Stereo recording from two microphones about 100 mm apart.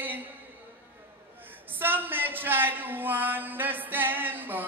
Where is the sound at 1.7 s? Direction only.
20° right (ahead or behind).